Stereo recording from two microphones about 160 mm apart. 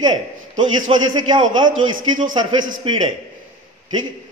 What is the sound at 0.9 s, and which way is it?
A man's voice, 30° right (ahead or behind).